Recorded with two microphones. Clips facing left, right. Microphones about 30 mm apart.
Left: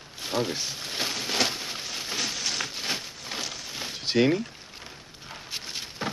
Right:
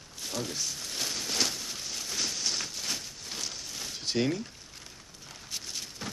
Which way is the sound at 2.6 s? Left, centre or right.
Left.